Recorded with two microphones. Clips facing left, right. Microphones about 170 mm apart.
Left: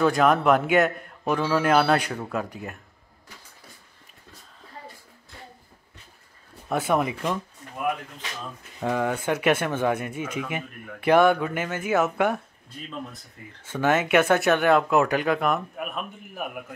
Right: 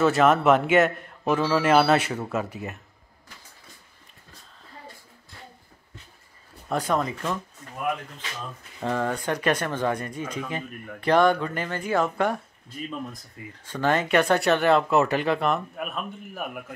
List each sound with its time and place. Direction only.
0.0 s a man's voice: centre (ahead or behind)
6.7 s speech: 5° left (ahead or behind)
8.8 s a man's voice: 10° left (ahead or behind)
13.7 s a man's voice: 5° left (ahead or behind)